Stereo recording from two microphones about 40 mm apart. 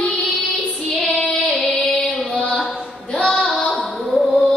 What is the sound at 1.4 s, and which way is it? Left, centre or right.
Music, left.